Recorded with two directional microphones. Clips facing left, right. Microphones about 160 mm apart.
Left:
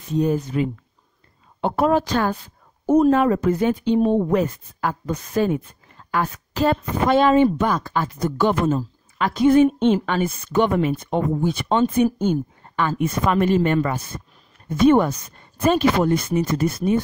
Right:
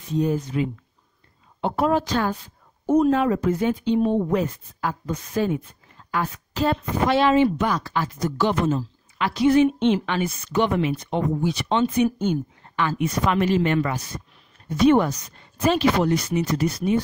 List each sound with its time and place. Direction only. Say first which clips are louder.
0.1 s a woman's voice: left 2 dB; 45° left (ahead or behind)